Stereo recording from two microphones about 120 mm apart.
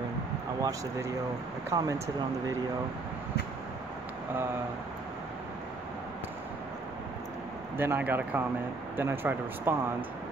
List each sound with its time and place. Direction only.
0.6 s speech: 25° right (ahead or behind)
7.7 s speech: 20° right (ahead or behind)